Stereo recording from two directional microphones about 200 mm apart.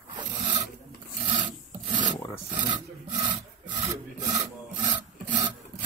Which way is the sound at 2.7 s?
40° right (ahead or behind).